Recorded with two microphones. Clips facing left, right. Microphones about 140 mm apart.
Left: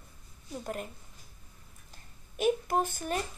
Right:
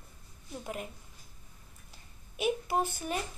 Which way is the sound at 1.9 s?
45° left (ahead or behind).